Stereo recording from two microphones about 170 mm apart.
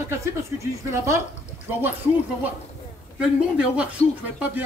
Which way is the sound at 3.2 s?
5° right (ahead or behind).